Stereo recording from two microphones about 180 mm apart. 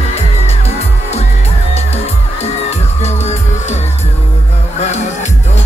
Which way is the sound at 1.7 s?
35° left (ahead or behind).